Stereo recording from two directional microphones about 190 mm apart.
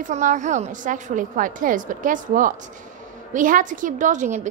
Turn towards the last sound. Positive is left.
turn(degrees=-40)  # may be behind; listen again after turning